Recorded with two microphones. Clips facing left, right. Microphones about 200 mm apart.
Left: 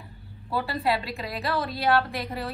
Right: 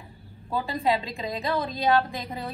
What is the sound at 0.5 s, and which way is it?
A woman's voice, 15° right (ahead or behind).